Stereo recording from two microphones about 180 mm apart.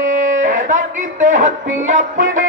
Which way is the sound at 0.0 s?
45° right (ahead or behind).